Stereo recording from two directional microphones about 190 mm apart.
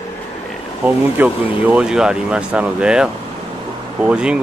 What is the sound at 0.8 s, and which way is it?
Speech, 10° right (ahead or behind).